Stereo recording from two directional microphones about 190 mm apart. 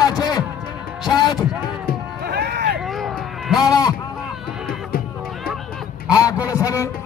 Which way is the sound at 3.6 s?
20° left (ahead or behind).